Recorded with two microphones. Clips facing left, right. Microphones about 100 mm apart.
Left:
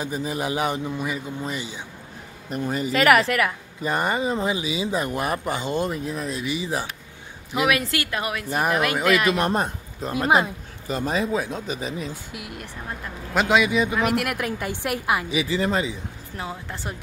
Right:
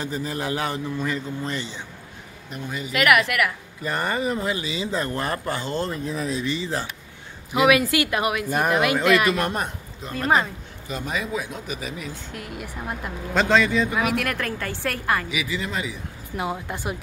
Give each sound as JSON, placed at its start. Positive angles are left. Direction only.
{"t": 0.0, "sound": "a man's voice", "side_deg": 15}
{"t": 2.5, "sound": "speech", "side_deg": 40}
{"t": 6.0, "sound": "speech", "side_deg": 0}
{"t": 6.4, "sound": "a man's voice", "side_deg": 15}
{"t": 7.5, "sound": "speech", "side_deg": -5}
{"t": 8.1, "sound": "a woman's voice", "side_deg": -15}
{"t": 8.5, "sound": "speech", "side_deg": 0}
{"t": 9.4, "sound": "speech", "side_deg": 30}
{"t": 10.1, "sound": "a man's voice", "side_deg": 15}
{"t": 10.9, "sound": "speech", "side_deg": 35}
{"t": 12.3, "sound": "a man's voice", "side_deg": 5}
{"t": 13.9, "sound": "a man's voice", "side_deg": 0}
{"t": 15.2, "sound": "speech", "side_deg": 35}
{"t": 16.3, "sound": "a woman's voice", "side_deg": -15}